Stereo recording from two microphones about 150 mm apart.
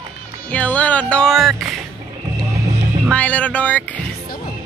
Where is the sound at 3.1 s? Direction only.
10° left (ahead or behind).